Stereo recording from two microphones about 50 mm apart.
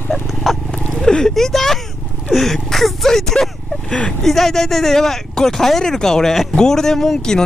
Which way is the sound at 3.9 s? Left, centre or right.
Left.